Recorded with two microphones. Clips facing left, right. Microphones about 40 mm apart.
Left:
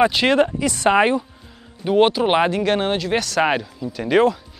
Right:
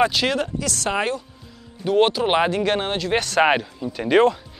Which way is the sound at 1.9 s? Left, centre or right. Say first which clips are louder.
Left 2 dB; centre.